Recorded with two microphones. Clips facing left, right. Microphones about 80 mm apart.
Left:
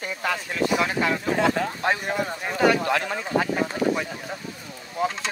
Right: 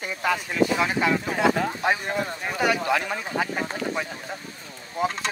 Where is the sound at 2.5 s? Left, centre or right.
Centre.